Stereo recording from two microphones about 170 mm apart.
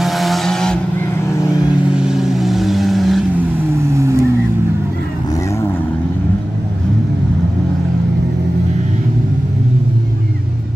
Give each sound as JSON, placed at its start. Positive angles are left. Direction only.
{"t": 0.0, "sound": "vehicle", "side_deg": 0}
{"t": 1.9, "sound": "vehicle", "side_deg": -5}
{"t": 3.7, "sound": "vehicle", "side_deg": -15}